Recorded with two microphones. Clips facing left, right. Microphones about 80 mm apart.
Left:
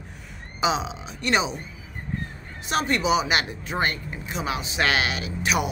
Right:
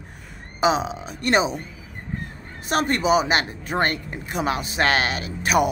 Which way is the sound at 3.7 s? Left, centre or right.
Right.